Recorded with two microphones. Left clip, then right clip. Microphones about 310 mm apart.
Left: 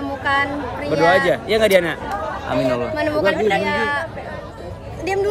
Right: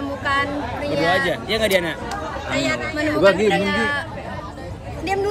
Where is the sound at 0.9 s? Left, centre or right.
Centre.